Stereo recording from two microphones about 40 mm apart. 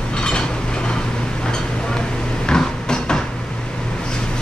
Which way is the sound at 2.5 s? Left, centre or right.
Centre.